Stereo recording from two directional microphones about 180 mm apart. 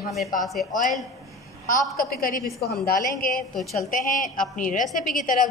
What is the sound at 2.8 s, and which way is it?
A woman's voice, 50° left (ahead or behind).